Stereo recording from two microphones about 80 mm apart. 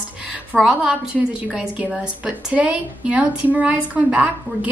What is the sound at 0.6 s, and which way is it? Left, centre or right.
A woman's voice, centre.